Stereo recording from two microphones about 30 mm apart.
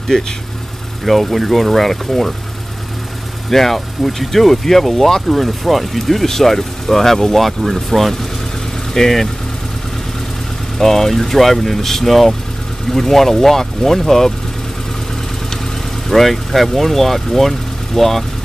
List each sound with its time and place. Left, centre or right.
0.1 s speech: left
1.0 s speech: centre
3.4 s speech: centre
10.8 s speech: centre
16.1 s speech: centre